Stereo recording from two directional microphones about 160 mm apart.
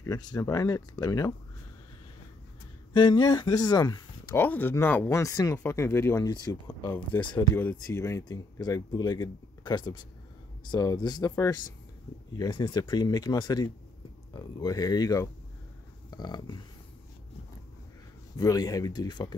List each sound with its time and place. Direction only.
0.0 s speech: 25° left (ahead or behind)
2.9 s speech: 30° left (ahead or behind)
4.4 s speech: 10° left (ahead or behind)
6.9 s speech: 10° left (ahead or behind)
12.4 s speech: 30° left (ahead or behind)
18.3 s speech: 20° left (ahead or behind)